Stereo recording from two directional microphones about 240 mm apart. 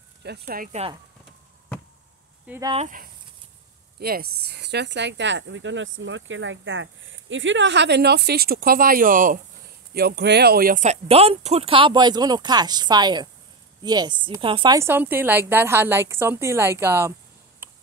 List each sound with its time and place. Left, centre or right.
0.2 s speech: right
2.4 s speech: centre
2.7 s a woman's voice: right; by 17.1 s centre
17.6 s tick-tock: centre